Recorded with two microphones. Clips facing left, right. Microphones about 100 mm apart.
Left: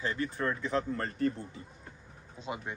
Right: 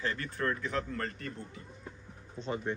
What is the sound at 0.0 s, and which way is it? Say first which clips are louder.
Speech: left 1 dB; 20° left (ahead or behind).